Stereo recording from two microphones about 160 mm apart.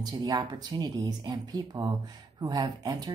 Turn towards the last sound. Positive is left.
turn(degrees=-25)  # may be behind; listen again after turning